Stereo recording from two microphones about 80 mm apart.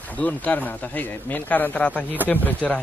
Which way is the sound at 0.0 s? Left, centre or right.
Centre.